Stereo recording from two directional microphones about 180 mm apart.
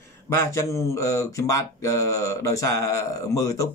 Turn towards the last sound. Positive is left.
turn(degrees=20)  # may be behind; listen again after turning